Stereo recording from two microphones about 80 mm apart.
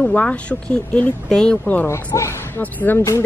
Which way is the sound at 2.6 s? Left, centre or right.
Left.